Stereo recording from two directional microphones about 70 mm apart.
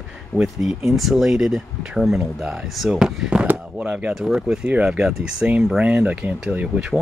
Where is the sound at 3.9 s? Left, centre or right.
Centre.